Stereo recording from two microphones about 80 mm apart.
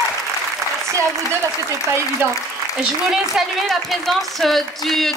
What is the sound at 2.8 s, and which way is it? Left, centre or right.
Speech, centre.